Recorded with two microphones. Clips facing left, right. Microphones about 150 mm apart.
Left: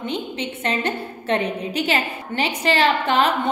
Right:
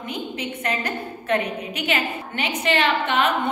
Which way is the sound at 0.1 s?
25° left (ahead or behind).